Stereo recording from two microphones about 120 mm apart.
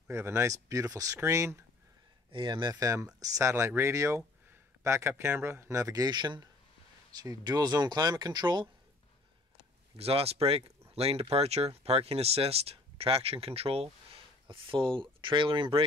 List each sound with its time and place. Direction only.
0.1 s speech: 25° right (ahead or behind)
2.3 s speech: 40° right (ahead or behind)
9.9 s speech: 55° right (ahead or behind)
14.5 s speech: 45° right (ahead or behind)